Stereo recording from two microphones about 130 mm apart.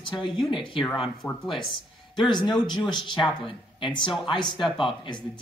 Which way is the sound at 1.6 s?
35° left (ahead or behind).